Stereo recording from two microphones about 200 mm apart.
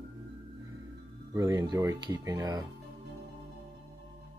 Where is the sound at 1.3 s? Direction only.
15° right (ahead or behind).